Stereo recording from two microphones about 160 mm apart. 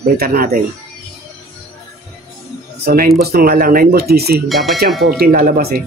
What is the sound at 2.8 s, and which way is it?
Speech, 75° right (ahead or behind).